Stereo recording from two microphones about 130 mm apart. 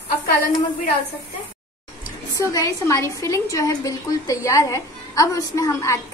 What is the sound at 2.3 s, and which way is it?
A woman's voice, 25° left (ahead or behind).